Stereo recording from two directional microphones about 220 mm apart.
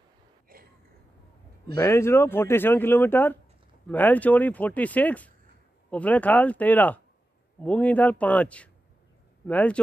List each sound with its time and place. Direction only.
1.8 s speech: 10° left (ahead or behind)